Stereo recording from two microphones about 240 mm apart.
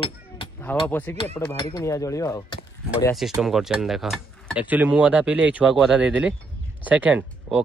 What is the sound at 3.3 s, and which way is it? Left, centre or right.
Speech, centre.